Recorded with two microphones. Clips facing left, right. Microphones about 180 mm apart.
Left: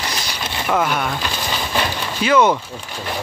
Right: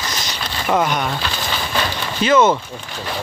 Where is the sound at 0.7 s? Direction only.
5° left (ahead or behind).